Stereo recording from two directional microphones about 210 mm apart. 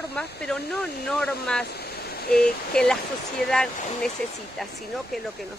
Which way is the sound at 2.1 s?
45° left (ahead or behind).